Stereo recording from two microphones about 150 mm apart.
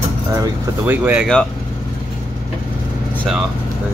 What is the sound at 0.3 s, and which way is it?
Speech, 20° right (ahead or behind).